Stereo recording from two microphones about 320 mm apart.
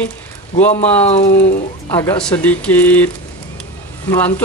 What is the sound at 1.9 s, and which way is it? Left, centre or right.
Speech, centre.